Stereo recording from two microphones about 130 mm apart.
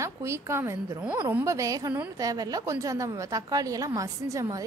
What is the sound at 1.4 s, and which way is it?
A woman's voice, 25° right (ahead or behind).